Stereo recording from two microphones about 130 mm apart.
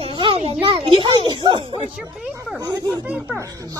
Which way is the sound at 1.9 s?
10° right (ahead or behind).